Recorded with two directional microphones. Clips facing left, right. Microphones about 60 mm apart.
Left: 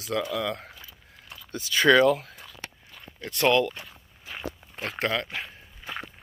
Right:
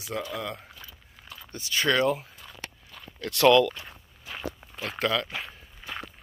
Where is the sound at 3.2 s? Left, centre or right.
Left.